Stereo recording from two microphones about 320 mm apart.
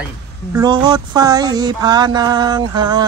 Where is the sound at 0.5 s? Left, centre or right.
Centre.